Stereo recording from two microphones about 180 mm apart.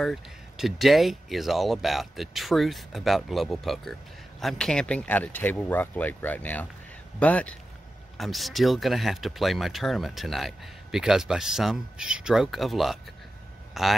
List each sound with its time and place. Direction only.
0.0 s speech: centre (ahead or behind)